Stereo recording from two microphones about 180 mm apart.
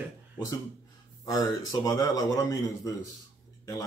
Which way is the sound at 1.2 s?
20° left (ahead or behind).